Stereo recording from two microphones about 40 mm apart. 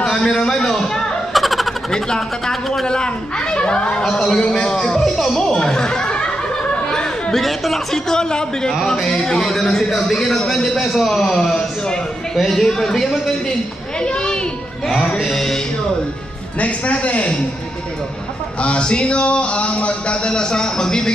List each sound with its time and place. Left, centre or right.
0.0 s a man's voice: centre
1.3 s vehicle: centre
1.9 s a man's voice: centre
3.0 s speech: left
4.0 s a sound: centre
7.3 s a man's voice: centre
14.0 s speech: left
15.2 s a man's voice: centre
16.5 s a man's voice: left
18.6 s speech: left